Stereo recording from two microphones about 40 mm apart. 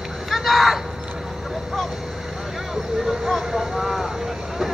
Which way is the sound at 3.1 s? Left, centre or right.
Centre.